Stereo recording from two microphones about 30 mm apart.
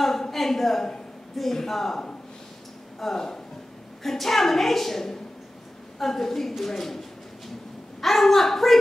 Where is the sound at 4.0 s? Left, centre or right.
Centre.